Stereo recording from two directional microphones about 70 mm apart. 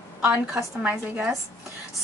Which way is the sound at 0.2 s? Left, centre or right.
Centre.